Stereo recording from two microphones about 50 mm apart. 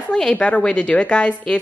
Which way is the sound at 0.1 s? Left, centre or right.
Left.